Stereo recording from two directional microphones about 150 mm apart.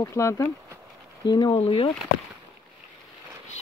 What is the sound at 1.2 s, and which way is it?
Speech, 30° left (ahead or behind).